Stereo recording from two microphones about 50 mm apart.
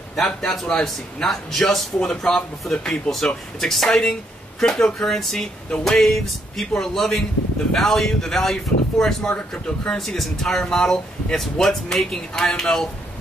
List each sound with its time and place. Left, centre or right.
0.7 s speech: centre
6.0 s speech: centre